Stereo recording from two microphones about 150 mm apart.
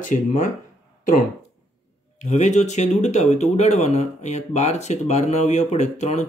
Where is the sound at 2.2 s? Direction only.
50° left (ahead or behind).